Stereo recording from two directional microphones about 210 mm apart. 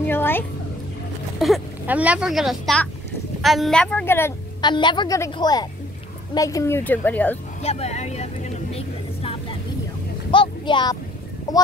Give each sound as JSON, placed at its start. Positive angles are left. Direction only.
{"t": 0.0, "sound": "music", "side_deg": 10}
{"t": 1.4, "sound": "speech", "side_deg": -5}
{"t": 4.6, "sound": "a woman's voice", "side_deg": 20}
{"t": 7.6, "sound": "vehicle", "side_deg": 30}
{"t": 10.3, "sound": "a sound", "side_deg": 25}